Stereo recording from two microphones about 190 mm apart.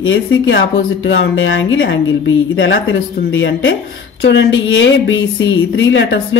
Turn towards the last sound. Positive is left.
turn(degrees=80)